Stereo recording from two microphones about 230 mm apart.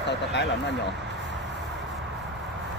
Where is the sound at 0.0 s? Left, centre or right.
Left.